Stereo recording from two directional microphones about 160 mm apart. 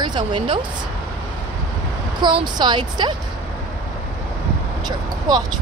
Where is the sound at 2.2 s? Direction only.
30° right (ahead or behind).